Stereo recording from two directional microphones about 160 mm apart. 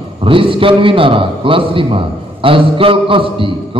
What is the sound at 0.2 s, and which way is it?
A man's voice, 35° right (ahead or behind).